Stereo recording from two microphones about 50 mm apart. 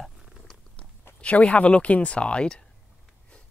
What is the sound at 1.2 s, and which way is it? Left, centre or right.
Speech, left.